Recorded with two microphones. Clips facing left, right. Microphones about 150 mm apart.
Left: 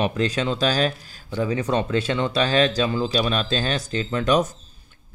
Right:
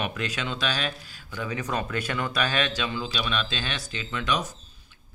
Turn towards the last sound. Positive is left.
turn(degrees=45)  # may be behind; listen again after turning